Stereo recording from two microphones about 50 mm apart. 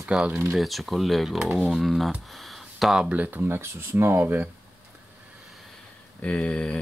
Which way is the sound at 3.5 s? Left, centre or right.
Right.